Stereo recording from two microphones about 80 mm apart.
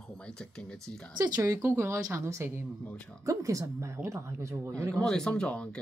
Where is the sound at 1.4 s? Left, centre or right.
Right.